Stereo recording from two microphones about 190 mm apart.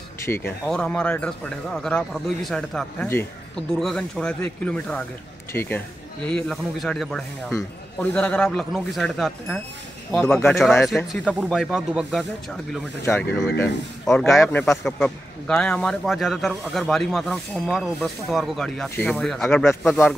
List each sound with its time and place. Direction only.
0.2 s speech: 10° left (ahead or behind)
10.1 s speech: 10° left (ahead or behind)
13.0 s speech: 10° left (ahead or behind)